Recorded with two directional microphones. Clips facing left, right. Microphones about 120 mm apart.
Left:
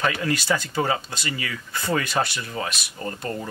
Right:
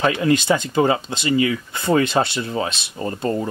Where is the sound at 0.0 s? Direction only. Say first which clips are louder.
Right 7 dB; 20° right (ahead or behind).